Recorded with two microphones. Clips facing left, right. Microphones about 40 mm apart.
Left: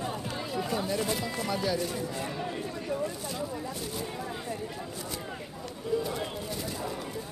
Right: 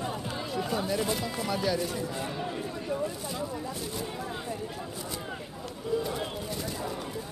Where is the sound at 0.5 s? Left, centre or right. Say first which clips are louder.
Right 1 dB; centre.